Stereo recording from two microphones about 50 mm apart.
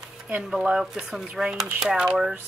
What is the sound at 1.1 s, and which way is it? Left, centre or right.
Speech, centre.